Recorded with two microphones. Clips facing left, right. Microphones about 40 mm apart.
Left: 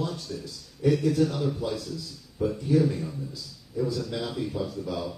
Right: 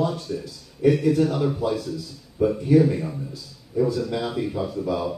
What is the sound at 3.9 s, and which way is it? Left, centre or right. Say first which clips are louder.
A man's voice: right 5 dB; centre.